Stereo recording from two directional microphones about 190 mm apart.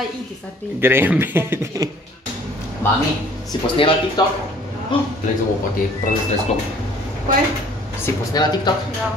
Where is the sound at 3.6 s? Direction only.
30° left (ahead or behind).